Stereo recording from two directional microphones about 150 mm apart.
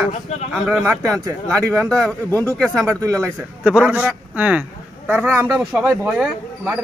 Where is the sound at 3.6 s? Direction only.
5° right (ahead or behind).